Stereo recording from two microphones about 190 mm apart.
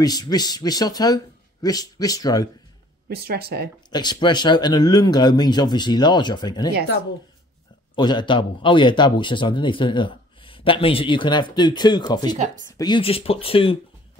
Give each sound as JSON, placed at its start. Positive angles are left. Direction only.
{"t": 0.0, "sound": "speech", "side_deg": 20}
{"t": 3.1, "sound": "speech", "side_deg": -55}
{"t": 3.9, "sound": "speech", "side_deg": 20}
{"t": 7.9, "sound": "speech", "side_deg": 25}